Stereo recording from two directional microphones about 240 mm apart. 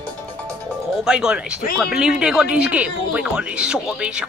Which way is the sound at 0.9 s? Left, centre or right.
Centre.